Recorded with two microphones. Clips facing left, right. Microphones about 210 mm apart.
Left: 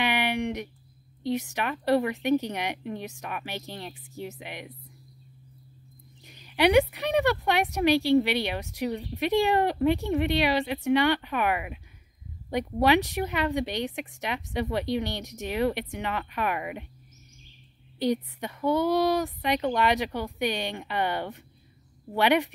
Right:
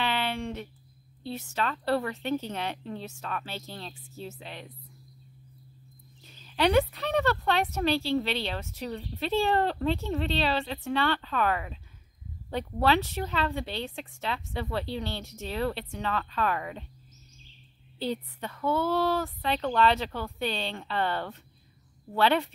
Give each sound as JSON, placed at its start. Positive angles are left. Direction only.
{"t": 0.0, "sound": "a sound", "side_deg": 15}
{"t": 1.2, "sound": "speech", "side_deg": 15}
{"t": 6.2, "sound": "speech", "side_deg": 15}
{"t": 17.9, "sound": "speech", "side_deg": 15}